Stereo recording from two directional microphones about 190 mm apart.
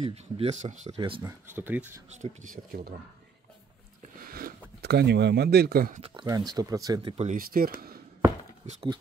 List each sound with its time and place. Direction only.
0.0 s speech: 35° right (ahead or behind)
0.9 s speech: 25° right (ahead or behind)
1.5 s speech: 10° right (ahead or behind)
2.2 s speech: 45° right (ahead or behind)
4.2 s speech: 50° right (ahead or behind)
5.9 s speech: 25° right (ahead or behind)
7.2 s speech: 50° right (ahead or behind)